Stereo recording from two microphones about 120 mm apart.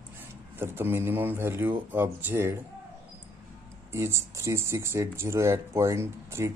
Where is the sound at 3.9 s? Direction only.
20° right (ahead or behind).